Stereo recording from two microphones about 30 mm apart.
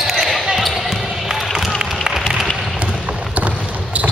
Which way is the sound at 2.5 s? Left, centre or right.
Centre.